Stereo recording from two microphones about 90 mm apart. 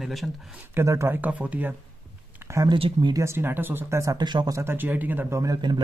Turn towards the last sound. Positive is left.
turn(degrees=-35)  # may be behind; listen again after turning